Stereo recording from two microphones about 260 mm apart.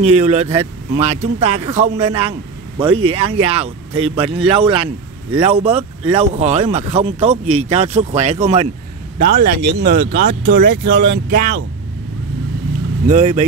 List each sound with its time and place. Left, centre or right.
0.0 s speech: right
9.2 s speech: right
13.0 s speech: right